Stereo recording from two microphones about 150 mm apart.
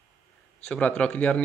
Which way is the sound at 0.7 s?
5° left (ahead or behind).